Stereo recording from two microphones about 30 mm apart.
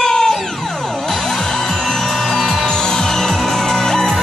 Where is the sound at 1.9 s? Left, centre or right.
Centre.